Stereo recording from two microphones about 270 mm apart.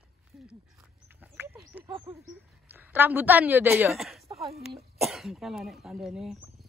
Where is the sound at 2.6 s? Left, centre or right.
Centre.